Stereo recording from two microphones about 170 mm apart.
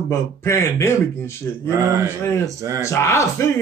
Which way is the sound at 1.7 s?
15° right (ahead or behind).